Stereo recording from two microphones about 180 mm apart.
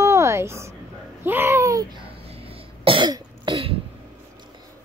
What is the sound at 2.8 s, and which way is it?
Cough, 25° right (ahead or behind).